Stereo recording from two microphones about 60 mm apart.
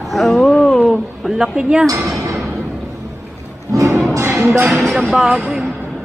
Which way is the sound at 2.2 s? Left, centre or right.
Right.